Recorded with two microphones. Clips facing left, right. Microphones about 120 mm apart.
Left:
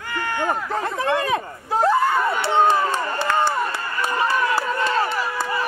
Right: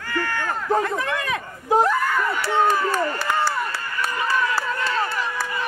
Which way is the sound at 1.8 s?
30° left (ahead or behind).